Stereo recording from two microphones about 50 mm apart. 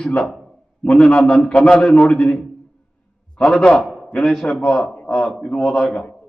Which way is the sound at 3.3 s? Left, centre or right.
Centre.